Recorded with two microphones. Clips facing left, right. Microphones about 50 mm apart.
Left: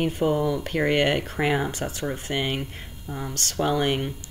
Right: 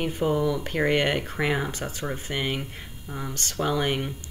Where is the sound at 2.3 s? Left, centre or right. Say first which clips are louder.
Left 2 dB; left.